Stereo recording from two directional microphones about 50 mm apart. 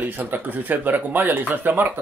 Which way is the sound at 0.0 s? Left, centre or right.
Right.